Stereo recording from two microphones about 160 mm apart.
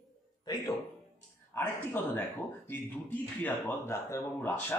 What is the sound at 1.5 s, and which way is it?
Speech, 10° left (ahead or behind).